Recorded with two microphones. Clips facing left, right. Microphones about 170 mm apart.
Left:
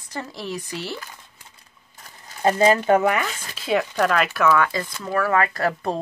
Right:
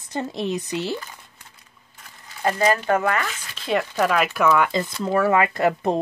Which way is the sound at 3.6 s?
Centre (ahead or behind).